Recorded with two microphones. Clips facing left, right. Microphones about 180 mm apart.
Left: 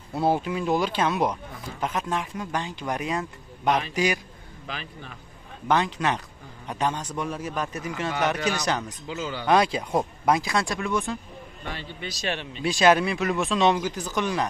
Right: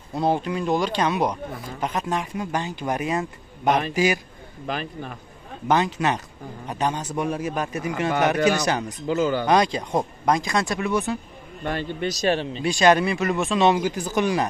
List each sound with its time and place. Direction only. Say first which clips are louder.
0.1 s speech: right 1 dB; 5° left (ahead or behind)
3.6 s a man's voice: right 3 dB; 45° right (ahead or behind)
3.9 s speech: right 3 dB; 5° right (ahead or behind)
4.6 s a man's voice: right 8 dB; 50° right (ahead or behind)
5.7 s speech: right 2 dB; 5° right (ahead or behind)
8.4 s a man's voice: right 7 dB; 55° right (ahead or behind)
8.6 s speech: right 3 dB; 10° right (ahead or behind)
9.0 s a man's voice: right 10 dB; 50° right (ahead or behind)
9.5 s speech: right 1 dB; 5° left (ahead or behind)
11.6 s a man's voice: right 10 dB; 50° right (ahead or behind)
12.6 s speech: right 1 dB; centre (ahead or behind)